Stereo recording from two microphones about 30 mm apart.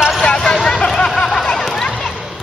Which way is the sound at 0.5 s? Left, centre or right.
Centre.